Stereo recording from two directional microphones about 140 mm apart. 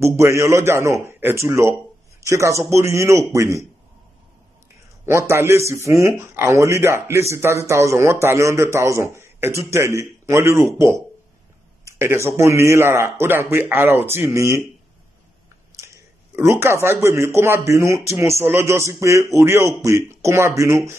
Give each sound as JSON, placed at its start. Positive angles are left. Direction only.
{"t": 0.0, "sound": "a man's voice", "side_deg": -20}
{"t": 5.0, "sound": "speech", "side_deg": -20}
{"t": 11.8, "sound": "speech", "side_deg": -20}
{"t": 16.3, "sound": "speech", "side_deg": -20}